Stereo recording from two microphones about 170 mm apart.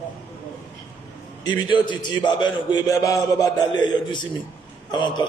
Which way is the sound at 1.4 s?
25° left (ahead or behind).